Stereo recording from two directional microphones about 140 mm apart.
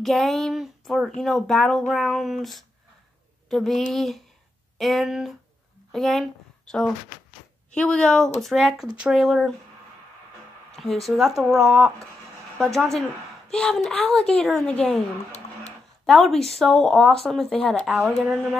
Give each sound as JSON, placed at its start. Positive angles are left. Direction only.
{"t": 0.0, "sound": "a woman's voice", "side_deg": 0}
{"t": 11.0, "sound": "a woman's voice", "side_deg": 0}
{"t": 16.1, "sound": "speech", "side_deg": 0}